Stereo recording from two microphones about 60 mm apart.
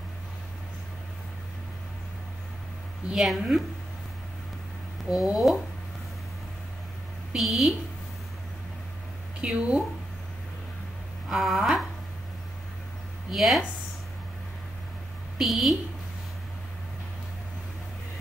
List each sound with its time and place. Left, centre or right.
3.2 s speech: centre
5.1 s speech: centre
7.3 s speech: centre
9.4 s speech: centre
11.2 s speech: centre
13.3 s speech: centre
15.3 s speech: centre